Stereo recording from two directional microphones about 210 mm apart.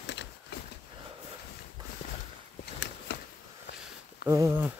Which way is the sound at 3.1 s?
60° left (ahead or behind).